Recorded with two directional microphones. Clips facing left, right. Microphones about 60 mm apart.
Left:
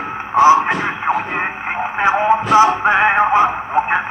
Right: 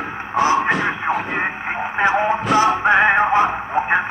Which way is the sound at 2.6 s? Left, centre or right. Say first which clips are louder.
Left 2 dB; centre.